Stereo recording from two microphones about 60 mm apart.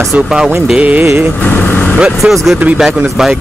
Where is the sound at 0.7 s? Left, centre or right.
Right.